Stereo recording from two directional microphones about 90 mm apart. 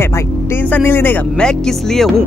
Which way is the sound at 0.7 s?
20° left (ahead or behind).